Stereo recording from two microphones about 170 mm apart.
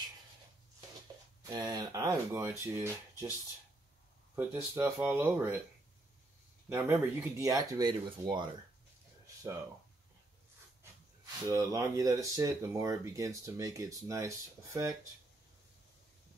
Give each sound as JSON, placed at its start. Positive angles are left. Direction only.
{"t": 1.7, "sound": "speech", "side_deg": -25}
{"t": 4.4, "sound": "speech", "side_deg": -15}
{"t": 4.9, "sound": "speech", "side_deg": -5}
{"t": 5.2, "sound": "speech", "side_deg": -15}
{"t": 6.7, "sound": "speech", "side_deg": -15}
{"t": 11.4, "sound": "speech", "side_deg": -20}